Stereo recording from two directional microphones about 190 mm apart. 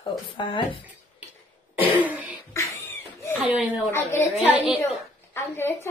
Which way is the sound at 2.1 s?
10° right (ahead or behind).